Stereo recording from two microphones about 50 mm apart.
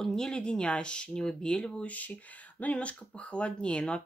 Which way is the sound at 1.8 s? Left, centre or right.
Left.